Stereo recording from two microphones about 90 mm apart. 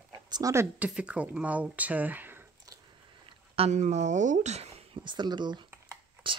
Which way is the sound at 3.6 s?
90° right.